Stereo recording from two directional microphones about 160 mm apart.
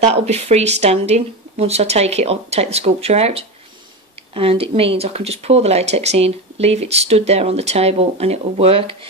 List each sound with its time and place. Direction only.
0.0 s speech: 45° right (ahead or behind)